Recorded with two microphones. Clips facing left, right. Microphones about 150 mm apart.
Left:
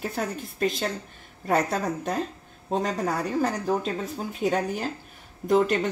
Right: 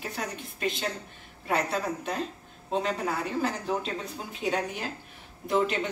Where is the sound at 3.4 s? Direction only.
45° left (ahead or behind).